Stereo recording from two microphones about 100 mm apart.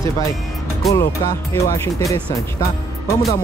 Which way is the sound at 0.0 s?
30° left (ahead or behind).